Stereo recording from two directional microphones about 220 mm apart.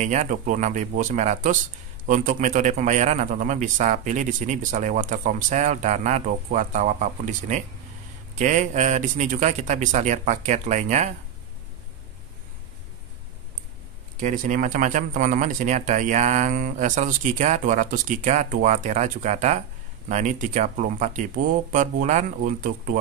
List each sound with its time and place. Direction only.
0.0 s a man's voice: 35° right (ahead or behind)
14.2 s a man's voice: 35° right (ahead or behind)